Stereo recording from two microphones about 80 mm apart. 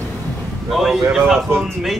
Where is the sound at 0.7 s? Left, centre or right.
Centre.